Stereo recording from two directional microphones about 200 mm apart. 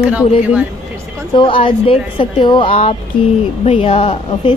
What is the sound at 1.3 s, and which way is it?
A woman's voice, 25° left (ahead or behind).